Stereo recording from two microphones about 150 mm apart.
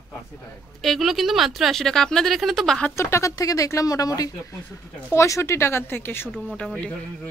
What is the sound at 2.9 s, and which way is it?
Speech, 20° left (ahead or behind).